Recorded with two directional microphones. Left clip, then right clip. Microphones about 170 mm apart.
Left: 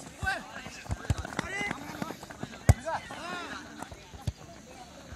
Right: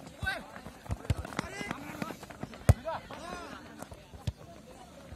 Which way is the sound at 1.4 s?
65° right (ahead or behind).